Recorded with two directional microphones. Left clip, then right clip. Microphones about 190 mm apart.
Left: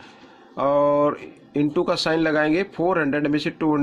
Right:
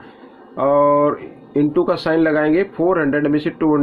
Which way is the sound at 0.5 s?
35° left (ahead or behind).